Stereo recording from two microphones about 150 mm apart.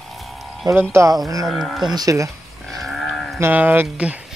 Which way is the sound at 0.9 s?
20° right (ahead or behind).